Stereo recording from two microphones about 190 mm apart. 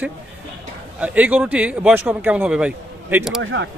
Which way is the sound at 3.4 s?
90° right.